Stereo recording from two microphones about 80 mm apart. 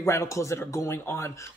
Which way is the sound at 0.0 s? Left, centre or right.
Left.